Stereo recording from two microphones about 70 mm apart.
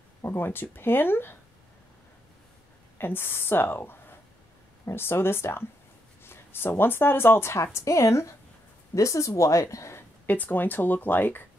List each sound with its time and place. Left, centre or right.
0.2 s a woman's voice: left
3.0 s a woman's voice: left
10.2 s speech: left